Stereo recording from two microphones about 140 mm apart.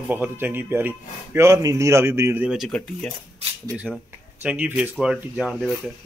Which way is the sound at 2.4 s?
Centre (ahead or behind).